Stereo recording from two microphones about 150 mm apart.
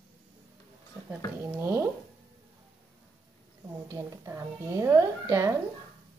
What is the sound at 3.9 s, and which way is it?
Speech, 20° right (ahead or behind).